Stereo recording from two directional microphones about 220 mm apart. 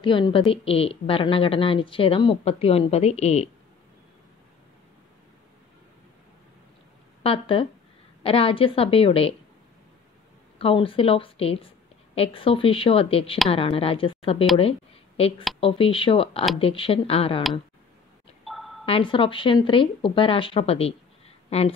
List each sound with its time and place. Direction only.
0.0 s a woman's voice: 20° left (ahead or behind)
7.2 s a woman's voice: 25° left (ahead or behind)
10.6 s a woman's voice: 25° left (ahead or behind)
14.6 s a sound: 25° left (ahead or behind)
15.6 s a woman's voice: 25° left (ahead or behind)
18.4 s a sound: centre (ahead or behind)
18.9 s a woman's voice: 25° left (ahead or behind)